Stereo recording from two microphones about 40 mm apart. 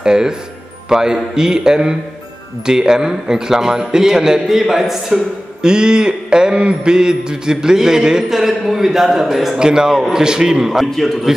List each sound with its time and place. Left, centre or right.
0.0 s mantra: centre
5.6 s mantra: centre
9.6 s a man's voice: centre
10.1 s mantra: centre
11.0 s a man's voice: centre